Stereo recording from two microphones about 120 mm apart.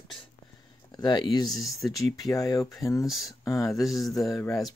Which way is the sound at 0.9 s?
35° left (ahead or behind).